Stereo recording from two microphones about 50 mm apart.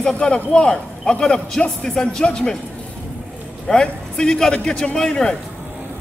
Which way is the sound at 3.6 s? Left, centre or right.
Centre.